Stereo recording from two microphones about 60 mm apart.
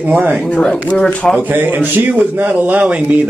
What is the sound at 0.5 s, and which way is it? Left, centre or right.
Speech, centre.